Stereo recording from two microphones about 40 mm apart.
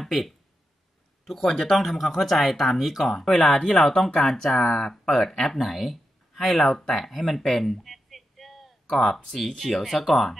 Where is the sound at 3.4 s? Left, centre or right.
Centre.